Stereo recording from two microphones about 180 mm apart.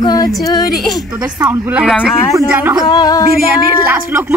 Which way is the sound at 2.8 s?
20° left (ahead or behind).